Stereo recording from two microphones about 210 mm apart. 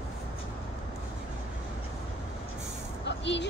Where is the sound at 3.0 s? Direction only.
55° left (ahead or behind).